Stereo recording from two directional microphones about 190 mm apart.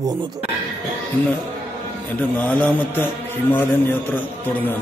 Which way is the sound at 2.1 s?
5° left (ahead or behind).